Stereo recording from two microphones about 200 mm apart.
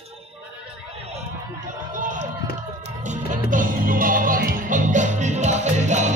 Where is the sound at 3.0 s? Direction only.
35° right (ahead or behind).